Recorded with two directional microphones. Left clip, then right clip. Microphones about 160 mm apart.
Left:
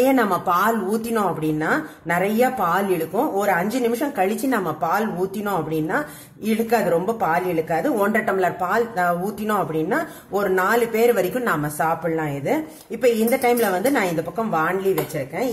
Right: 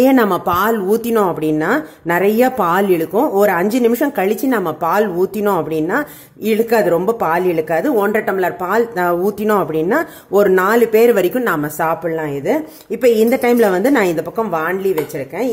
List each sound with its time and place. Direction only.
0.0 s a woman's voice: 55° right (ahead or behind)